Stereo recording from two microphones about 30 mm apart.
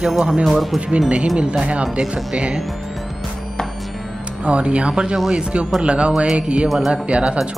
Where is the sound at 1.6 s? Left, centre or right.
Right.